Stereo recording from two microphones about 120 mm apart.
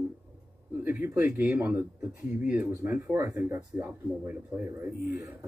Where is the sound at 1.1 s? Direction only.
15° right (ahead or behind).